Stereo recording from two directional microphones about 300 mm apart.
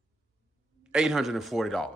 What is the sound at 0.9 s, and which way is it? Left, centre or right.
Speech, centre.